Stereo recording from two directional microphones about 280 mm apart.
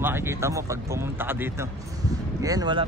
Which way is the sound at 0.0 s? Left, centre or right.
Centre.